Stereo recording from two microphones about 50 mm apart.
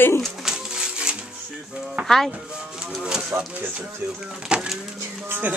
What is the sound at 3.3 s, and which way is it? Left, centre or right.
Speech, right.